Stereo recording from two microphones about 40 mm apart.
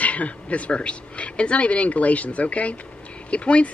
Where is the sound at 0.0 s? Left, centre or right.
Left.